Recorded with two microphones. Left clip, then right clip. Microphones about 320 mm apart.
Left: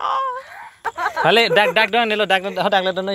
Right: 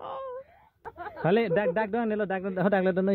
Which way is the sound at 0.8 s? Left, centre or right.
Centre.